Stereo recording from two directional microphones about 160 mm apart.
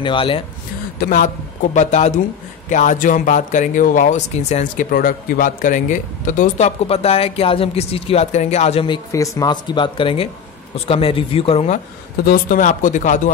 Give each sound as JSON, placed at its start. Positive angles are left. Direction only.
{"t": 0.0, "sound": "speech", "side_deg": 30}
{"t": 0.9, "sound": "speech", "side_deg": 60}
{"t": 4.9, "sound": "a man's voice", "side_deg": 65}
{"t": 6.9, "sound": "speech", "side_deg": 40}
{"t": 8.8, "sound": "speech", "side_deg": 25}
{"t": 12.3, "sound": "speech", "side_deg": 55}